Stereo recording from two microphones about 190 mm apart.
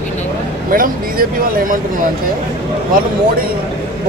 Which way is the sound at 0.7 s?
50° right (ahead or behind).